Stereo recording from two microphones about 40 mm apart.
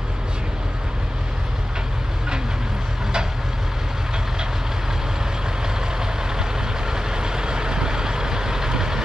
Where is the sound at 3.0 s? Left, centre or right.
Centre.